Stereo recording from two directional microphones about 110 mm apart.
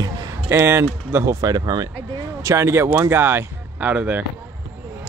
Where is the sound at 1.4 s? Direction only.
35° right (ahead or behind).